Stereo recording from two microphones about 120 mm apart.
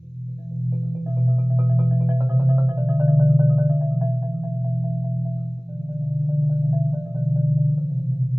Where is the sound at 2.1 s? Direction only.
25° right (ahead or behind).